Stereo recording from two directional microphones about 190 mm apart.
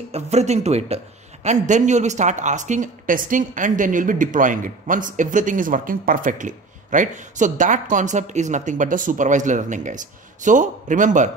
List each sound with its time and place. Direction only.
0.1 s speech: 35° right (ahead or behind)